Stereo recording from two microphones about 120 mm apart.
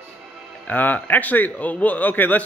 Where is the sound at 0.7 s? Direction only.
15° left (ahead or behind).